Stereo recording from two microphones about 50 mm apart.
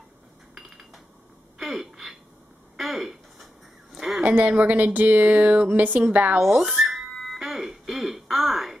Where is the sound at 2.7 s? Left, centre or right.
Centre.